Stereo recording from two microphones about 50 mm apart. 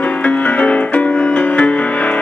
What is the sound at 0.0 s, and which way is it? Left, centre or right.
Music, left.